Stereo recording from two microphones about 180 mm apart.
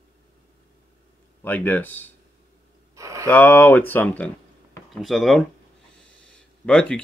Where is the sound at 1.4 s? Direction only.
10° left (ahead or behind).